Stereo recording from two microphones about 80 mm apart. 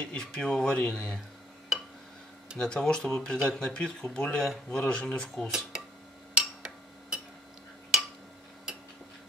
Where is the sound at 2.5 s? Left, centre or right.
Centre.